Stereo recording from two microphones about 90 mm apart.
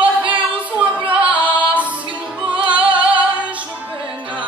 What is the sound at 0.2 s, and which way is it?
Singing, 15° right (ahead or behind).